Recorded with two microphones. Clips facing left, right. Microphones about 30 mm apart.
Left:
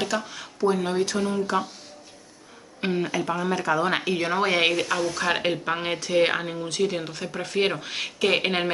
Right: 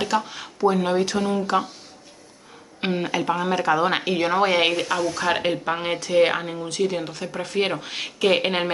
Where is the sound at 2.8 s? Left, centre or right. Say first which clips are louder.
Right 2 dB; centre.